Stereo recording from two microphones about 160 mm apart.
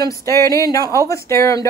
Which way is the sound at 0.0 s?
20° left (ahead or behind).